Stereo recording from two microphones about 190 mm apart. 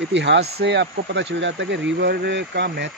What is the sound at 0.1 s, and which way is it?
Speech, 70° right (ahead or behind).